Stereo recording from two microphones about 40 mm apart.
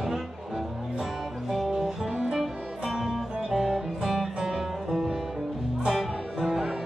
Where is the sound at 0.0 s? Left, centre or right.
Centre.